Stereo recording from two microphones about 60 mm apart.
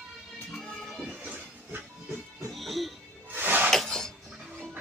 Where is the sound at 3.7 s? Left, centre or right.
Centre.